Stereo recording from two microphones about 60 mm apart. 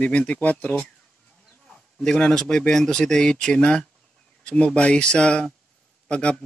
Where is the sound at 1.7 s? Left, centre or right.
Centre.